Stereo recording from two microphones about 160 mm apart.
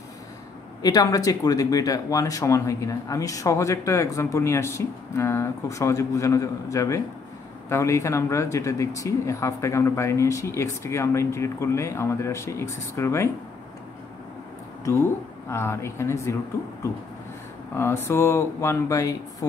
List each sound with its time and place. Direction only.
0.8 s speech: 20° left (ahead or behind)
15.5 s speech: 15° left (ahead or behind)
17.7 s speech: 15° left (ahead or behind)